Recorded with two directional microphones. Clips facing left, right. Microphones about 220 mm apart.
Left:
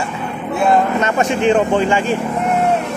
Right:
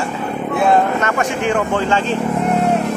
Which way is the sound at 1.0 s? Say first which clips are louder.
Left 3 dB; 20° left (ahead or behind).